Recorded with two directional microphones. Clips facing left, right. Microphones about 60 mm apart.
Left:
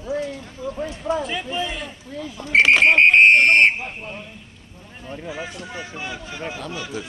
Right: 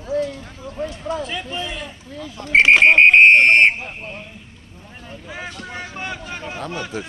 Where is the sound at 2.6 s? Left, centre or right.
Centre.